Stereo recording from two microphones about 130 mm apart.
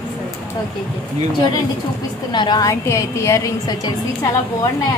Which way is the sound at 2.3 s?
35° left (ahead or behind).